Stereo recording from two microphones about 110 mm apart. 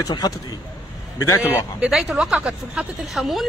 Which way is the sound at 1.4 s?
10° right (ahead or behind).